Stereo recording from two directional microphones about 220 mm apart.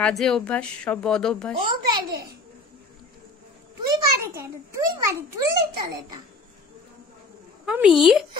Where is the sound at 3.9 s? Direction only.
15° right (ahead or behind).